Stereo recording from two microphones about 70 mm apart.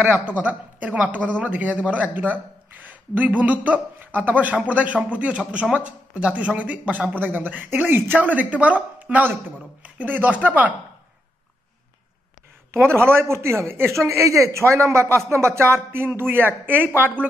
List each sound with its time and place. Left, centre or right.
0.0 s speech: centre
12.7 s speech: right